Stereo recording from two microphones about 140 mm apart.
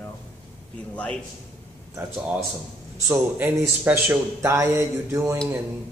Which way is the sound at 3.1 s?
15° right (ahead or behind).